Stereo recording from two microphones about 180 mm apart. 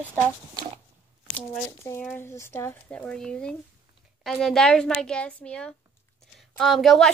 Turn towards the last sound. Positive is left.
turn(degrees=0)  # may be behind; listen again after turning